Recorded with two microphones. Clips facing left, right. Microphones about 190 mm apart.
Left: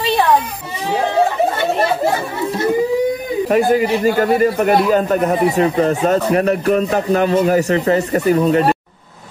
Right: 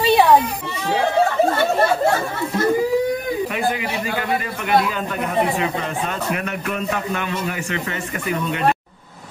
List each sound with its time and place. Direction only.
3.4 s a man's voice: 40° left (ahead or behind)